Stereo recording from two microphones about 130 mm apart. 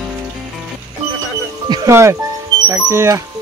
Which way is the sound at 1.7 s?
25° right (ahead or behind).